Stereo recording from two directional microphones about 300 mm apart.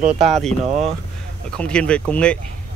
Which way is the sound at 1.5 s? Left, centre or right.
Centre.